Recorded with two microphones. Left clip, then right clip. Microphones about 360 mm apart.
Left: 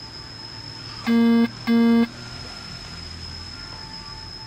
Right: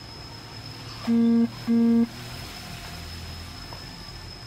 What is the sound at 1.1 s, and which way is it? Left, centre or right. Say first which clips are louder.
Music: left 3 dB; left.